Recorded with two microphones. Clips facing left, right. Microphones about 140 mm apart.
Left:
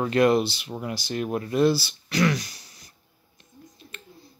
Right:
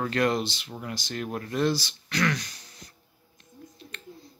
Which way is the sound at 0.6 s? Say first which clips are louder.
Left 5 dB; 25° left (ahead or behind).